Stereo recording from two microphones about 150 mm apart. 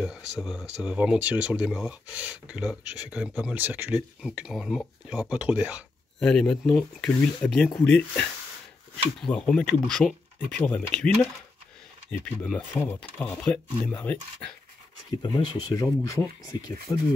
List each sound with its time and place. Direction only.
0.0 s speech: 5° right (ahead or behind)
6.1 s speech: 5° left (ahead or behind)
12.8 s speech: 10° left (ahead or behind)
15.3 s speech: 25° left (ahead or behind)